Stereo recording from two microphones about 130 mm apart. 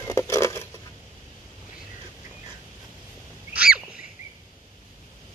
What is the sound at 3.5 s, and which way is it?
Goose, 10° right (ahead or behind).